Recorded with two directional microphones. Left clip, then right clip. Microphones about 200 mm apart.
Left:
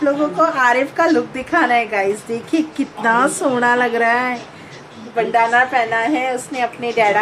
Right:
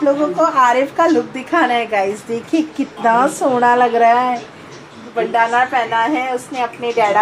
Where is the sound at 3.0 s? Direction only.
10° left (ahead or behind).